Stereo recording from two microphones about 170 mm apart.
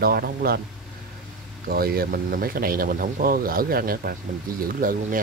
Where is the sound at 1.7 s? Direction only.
60° right (ahead or behind).